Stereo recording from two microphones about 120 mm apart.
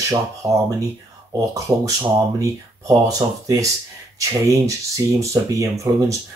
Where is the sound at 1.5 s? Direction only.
25° right (ahead or behind).